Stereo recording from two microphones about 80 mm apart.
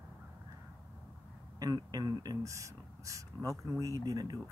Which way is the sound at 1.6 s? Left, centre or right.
Right.